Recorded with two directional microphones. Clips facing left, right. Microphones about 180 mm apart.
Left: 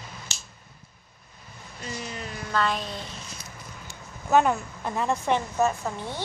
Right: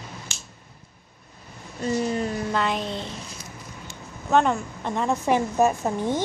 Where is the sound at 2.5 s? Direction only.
20° right (ahead or behind).